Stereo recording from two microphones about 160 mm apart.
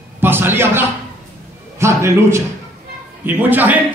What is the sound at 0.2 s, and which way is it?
A man's voice, 15° right (ahead or behind).